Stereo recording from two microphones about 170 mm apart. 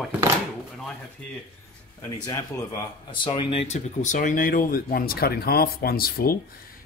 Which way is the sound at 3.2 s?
30° left (ahead or behind).